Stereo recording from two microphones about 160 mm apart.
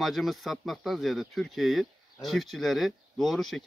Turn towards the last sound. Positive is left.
turn(degrees=0)  # may be behind; listen again after turning